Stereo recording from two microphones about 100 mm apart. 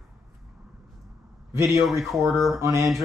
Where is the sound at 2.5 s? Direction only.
30° right (ahead or behind).